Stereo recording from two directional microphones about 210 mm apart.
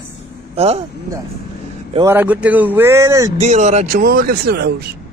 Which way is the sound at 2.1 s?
10° right (ahead or behind).